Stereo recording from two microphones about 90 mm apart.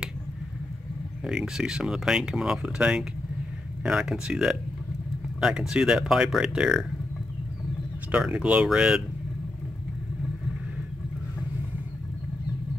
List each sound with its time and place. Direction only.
1.2 s speech: 5° right (ahead or behind)
8.2 s speech: 10° right (ahead or behind)